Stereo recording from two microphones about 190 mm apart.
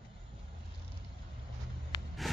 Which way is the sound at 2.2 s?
Centre (ahead or behind).